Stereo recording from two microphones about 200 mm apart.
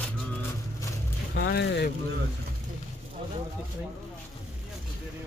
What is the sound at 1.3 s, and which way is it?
Speech, 60° left (ahead or behind).